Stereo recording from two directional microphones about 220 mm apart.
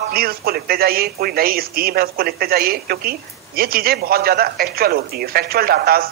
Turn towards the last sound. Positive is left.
turn(degrees=-45)  # may be behind; listen again after turning